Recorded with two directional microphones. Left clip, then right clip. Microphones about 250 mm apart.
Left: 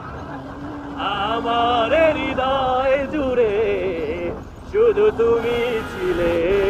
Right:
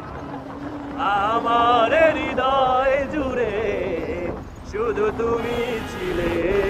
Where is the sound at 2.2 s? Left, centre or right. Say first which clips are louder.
Right 1 dB; centre.